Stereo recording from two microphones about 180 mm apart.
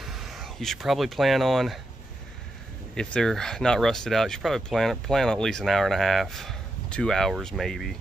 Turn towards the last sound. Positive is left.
turn(degrees=0)  # may be behind; listen again after turning